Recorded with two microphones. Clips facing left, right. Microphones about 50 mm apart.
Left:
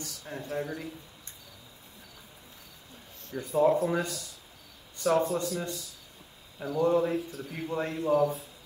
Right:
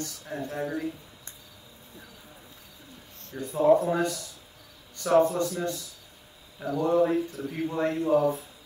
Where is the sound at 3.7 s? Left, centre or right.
Right.